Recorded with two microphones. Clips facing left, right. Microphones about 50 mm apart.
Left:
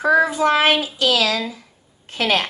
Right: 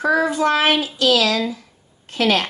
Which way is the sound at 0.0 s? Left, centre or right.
Centre.